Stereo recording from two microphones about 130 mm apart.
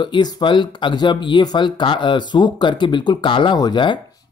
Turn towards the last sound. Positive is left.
turn(degrees=35)  # may be behind; listen again after turning